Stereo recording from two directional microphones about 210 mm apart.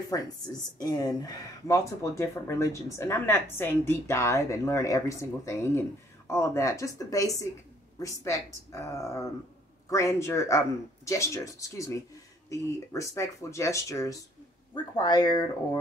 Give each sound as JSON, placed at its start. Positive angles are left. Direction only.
{"t": 0.1, "sound": "speech", "side_deg": 20}